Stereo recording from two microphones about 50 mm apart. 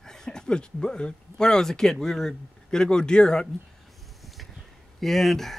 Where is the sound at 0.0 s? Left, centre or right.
Centre.